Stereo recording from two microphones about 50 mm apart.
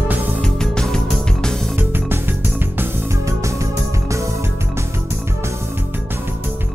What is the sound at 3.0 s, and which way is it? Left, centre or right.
Music, right.